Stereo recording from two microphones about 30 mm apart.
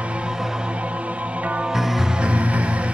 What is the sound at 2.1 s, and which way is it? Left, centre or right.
Music, right.